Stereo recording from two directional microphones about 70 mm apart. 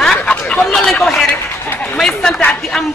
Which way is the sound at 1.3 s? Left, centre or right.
Left.